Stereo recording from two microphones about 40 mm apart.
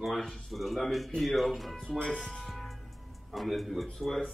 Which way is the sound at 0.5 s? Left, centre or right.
Centre.